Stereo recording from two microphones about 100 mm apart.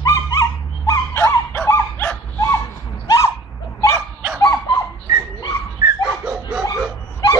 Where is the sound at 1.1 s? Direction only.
20° left (ahead or behind).